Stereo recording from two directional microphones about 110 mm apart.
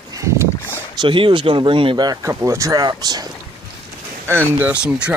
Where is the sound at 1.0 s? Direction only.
50° right (ahead or behind).